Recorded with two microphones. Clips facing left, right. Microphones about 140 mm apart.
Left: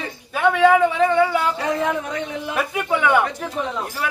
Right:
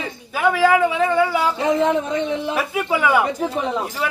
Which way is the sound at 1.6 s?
20° right (ahead or behind).